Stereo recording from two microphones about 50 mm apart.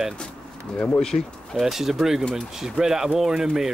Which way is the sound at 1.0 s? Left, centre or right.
Centre.